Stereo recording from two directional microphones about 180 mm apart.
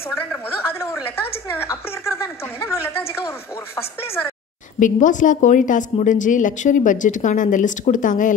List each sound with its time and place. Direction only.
0.1 s a woman's voice: 10° left (ahead or behind)
4.7 s a woman's voice: 45° left (ahead or behind)